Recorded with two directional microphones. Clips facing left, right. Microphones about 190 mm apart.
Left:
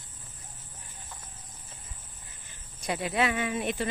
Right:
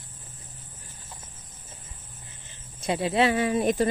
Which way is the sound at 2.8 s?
25° right (ahead or behind).